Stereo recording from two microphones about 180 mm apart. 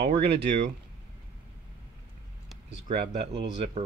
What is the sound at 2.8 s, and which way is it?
Speech, 55° right (ahead or behind).